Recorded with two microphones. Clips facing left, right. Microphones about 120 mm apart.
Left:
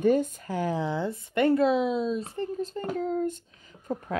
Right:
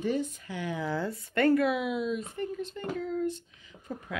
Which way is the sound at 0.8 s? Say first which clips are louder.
Left 2 dB; 20° left (ahead or behind).